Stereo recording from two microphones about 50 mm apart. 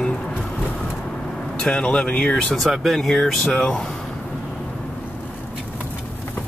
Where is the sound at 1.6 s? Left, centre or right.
Centre.